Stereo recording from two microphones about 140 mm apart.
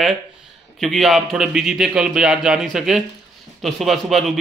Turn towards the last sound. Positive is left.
turn(degrees=0)  # may be behind; listen again after turning